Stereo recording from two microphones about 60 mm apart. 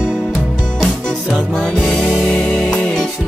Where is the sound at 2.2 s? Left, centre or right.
Centre.